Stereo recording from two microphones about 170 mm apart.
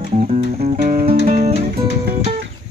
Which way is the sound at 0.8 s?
40° right (ahead or behind).